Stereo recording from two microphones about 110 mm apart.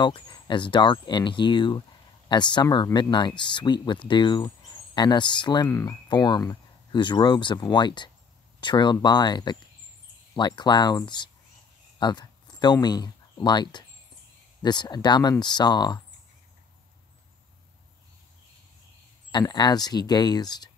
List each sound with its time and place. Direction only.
0.0 s speech: 45° left (ahead or behind)
19.3 s speech: 40° left (ahead or behind)